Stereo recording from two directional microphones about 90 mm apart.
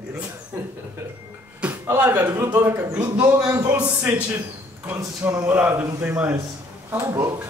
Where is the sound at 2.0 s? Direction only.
15° right (ahead or behind).